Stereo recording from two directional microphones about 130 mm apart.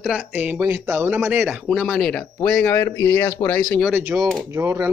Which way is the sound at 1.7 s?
5° left (ahead or behind).